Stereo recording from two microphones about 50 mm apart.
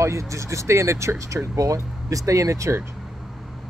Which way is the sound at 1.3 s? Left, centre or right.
Right.